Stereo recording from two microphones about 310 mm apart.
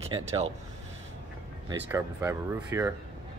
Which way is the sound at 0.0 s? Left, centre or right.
Centre.